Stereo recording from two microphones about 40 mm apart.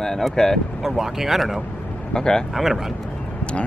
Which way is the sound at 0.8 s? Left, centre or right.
Centre.